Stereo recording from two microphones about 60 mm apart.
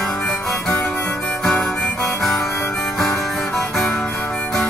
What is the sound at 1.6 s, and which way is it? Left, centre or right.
Harmonica, centre.